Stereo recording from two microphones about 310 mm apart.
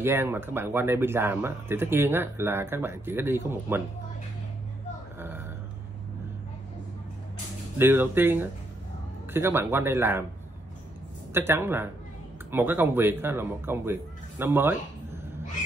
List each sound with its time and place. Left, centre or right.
0.0 s speech: centre
7.7 s speech: centre
11.3 s speech: centre